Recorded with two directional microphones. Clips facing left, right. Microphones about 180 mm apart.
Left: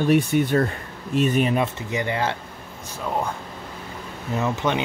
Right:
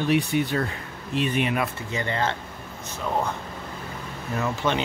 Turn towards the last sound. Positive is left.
turn(degrees=15)  # may be behind; listen again after turning